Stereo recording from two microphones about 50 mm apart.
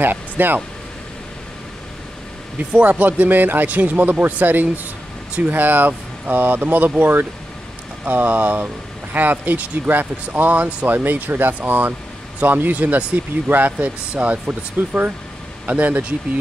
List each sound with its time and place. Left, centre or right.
0.0 s speech: right
2.7 s speech: right